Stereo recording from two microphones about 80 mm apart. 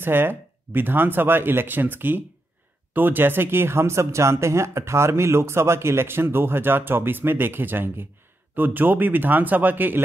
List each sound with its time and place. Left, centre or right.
0.0 s speech: right